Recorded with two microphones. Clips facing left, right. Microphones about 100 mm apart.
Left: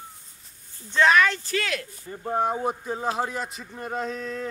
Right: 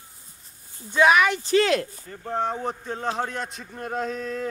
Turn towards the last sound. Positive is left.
turn(degrees=0)  # may be behind; listen again after turning